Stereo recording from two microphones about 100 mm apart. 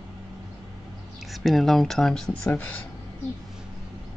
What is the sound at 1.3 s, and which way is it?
Speech, centre (ahead or behind).